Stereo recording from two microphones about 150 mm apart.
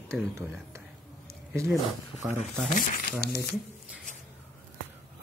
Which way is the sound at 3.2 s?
90° left.